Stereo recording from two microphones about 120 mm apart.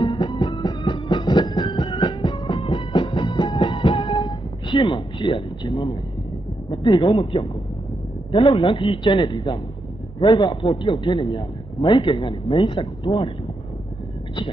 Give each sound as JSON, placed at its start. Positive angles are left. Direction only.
{"t": 0.0, "sound": "music", "side_deg": 45}
{"t": 6.7, "sound": "a man's voice", "side_deg": 40}